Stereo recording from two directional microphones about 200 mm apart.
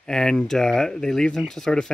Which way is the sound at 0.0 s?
5° left (ahead or behind).